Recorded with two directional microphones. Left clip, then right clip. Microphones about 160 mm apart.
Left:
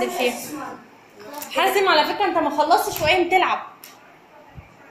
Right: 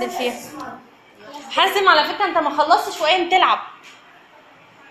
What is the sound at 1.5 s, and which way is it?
A woman's voice, 10° left (ahead or behind).